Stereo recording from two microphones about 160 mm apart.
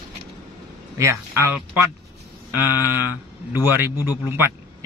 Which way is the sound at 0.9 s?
15° right (ahead or behind).